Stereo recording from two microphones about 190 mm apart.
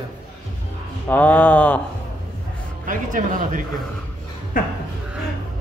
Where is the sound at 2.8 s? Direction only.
45° right (ahead or behind).